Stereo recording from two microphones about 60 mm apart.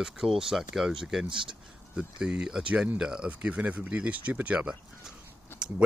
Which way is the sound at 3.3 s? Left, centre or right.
Right.